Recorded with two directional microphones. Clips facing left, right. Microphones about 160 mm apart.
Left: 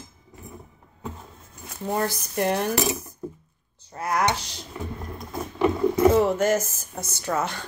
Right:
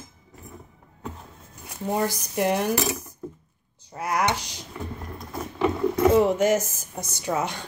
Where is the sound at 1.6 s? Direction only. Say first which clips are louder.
Right 1 dB; 10° right (ahead or behind).